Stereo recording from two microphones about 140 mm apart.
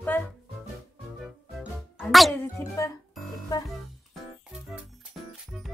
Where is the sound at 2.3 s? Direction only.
20° left (ahead or behind).